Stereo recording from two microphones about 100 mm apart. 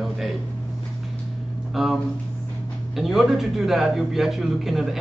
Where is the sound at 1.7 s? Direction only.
5° right (ahead or behind).